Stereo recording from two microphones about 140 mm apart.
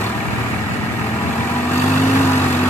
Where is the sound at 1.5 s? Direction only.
15° left (ahead or behind).